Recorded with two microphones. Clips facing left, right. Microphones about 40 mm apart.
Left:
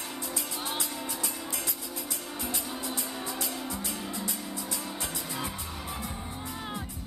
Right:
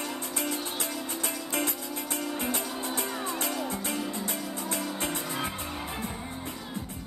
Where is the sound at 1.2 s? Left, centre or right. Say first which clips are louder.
Right 5 dB; right.